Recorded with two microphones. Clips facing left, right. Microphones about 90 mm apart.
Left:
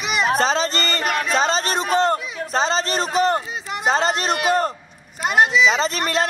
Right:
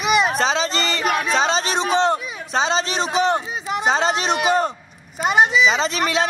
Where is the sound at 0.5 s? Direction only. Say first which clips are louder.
Even; 45° left (ahead or behind).